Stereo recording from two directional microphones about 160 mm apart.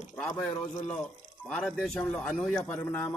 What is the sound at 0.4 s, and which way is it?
A man's voice, 10° left (ahead or behind).